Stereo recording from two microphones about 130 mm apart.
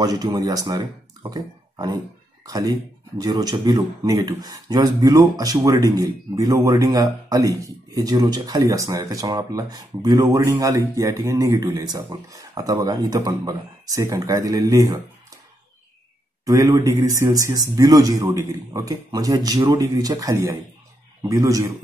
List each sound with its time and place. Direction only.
0.0 s speech: 30° right (ahead or behind)
16.4 s speech: 25° right (ahead or behind)